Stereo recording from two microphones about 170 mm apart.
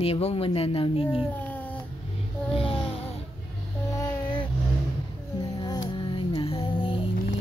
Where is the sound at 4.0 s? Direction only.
25° left (ahead or behind).